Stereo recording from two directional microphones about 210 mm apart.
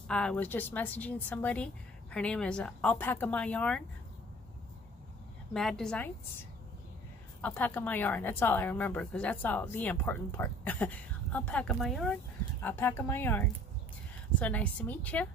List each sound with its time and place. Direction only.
0.1 s a woman's voice: 5° left (ahead or behind)
5.5 s a woman's voice: centre (ahead or behind)
7.4 s a woman's voice: 10° left (ahead or behind)
12.6 s a woman's voice: 10° left (ahead or behind)